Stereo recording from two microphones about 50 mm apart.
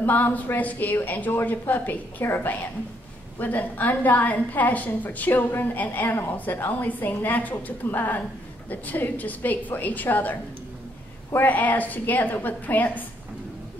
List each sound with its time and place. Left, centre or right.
0.0 s a woman's voice: left
11.3 s a woman's voice: left